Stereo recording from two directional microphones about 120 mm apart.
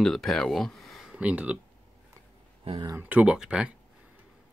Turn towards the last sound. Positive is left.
turn(degrees=-10)  # may be behind; listen again after turning